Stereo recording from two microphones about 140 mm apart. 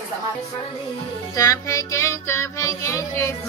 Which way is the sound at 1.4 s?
25° left (ahead or behind).